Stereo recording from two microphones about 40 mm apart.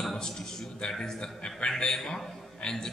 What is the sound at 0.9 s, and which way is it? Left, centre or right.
A man's voice, centre.